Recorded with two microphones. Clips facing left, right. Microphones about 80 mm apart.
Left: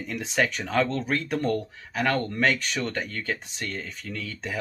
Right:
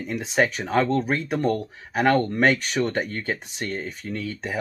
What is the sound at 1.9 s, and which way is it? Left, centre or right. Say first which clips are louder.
Speech: right 6 dB; right.